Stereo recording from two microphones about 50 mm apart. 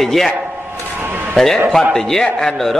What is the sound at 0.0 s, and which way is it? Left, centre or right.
Speech, centre.